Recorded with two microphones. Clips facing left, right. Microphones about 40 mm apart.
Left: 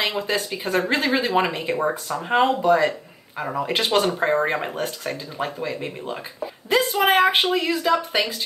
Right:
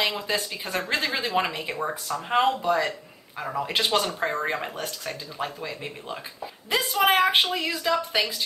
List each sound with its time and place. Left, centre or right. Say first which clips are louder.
0.3 s speech: left 5 dB; centre
1.8 s speech: left 5 dB; left
2.2 s a woman's voice: left 4 dB; centre